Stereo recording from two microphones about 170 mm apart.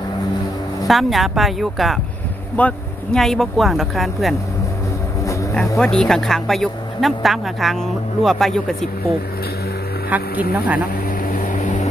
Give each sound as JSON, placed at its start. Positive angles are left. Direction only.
{"t": 0.8, "sound": "speech", "side_deg": 0}
{"t": 5.8, "sound": "speech", "side_deg": 5}
{"t": 10.0, "sound": "speech", "side_deg": -10}
{"t": 11.2, "sound": "vehicle", "side_deg": 55}